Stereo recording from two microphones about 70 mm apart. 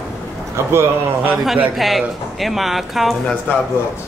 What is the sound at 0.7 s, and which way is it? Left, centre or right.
Speech, right.